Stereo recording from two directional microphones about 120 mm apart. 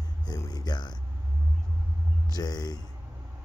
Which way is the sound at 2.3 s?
35° left (ahead or behind).